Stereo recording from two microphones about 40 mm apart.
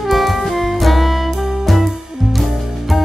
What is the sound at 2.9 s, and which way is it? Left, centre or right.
Music, centre.